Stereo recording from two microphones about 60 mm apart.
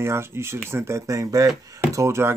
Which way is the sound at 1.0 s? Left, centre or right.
Right.